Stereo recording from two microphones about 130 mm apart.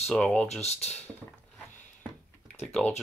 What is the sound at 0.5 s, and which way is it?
Speech, 55° left (ahead or behind).